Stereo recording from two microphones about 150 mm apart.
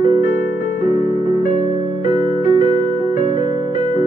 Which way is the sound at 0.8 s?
60° left (ahead or behind).